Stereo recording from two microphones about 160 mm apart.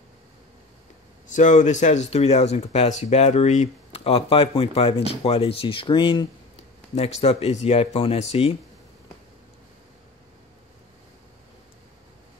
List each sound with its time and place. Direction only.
1.3 s speech: 50° left (ahead or behind); by 6.2 s 30° left (ahead or behind)
7.0 s speech: 40° left (ahead or behind)